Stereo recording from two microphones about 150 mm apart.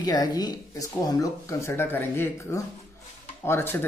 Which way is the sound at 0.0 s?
25° left (ahead or behind).